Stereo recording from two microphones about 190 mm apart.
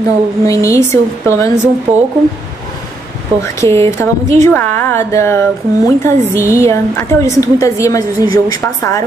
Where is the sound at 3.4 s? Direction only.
15° left (ahead or behind).